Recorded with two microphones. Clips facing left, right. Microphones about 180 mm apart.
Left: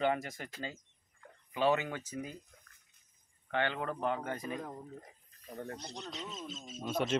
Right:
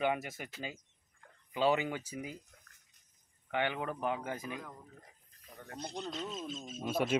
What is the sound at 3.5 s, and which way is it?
Speech, 10° right (ahead or behind).